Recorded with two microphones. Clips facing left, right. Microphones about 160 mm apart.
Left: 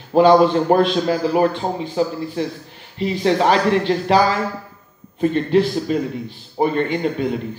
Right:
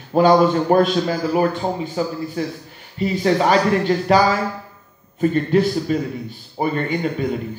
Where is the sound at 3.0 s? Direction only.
5° right (ahead or behind).